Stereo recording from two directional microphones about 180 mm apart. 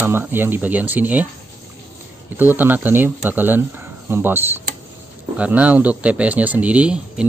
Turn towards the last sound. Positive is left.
turn(degrees=-5)  # may be behind; listen again after turning